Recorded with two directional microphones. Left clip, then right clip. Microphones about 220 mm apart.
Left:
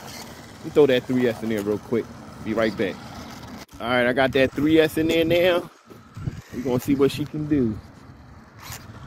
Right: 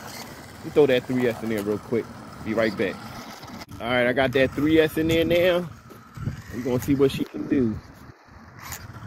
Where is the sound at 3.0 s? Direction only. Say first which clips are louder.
Even; centre (ahead or behind).